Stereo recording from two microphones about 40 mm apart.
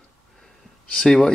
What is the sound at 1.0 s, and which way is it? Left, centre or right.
Speech, centre.